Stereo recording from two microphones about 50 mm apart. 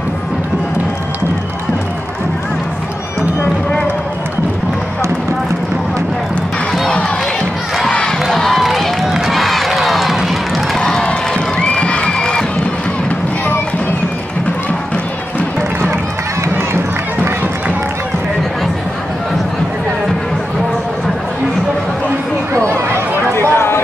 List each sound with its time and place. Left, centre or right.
8.2 s crowd: centre
10.8 s crowd: centre
23.5 s a sound: left